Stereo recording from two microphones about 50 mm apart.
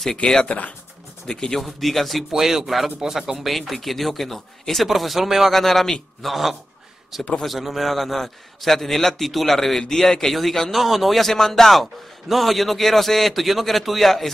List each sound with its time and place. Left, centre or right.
0.2 s a man's voice: centre
1.6 s a man's voice: centre